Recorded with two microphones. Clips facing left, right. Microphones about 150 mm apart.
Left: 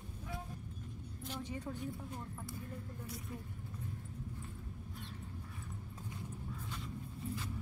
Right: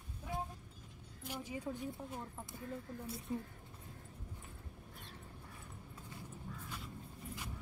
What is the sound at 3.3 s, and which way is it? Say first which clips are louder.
Speech: right 10 dB; 25° right (ahead or behind).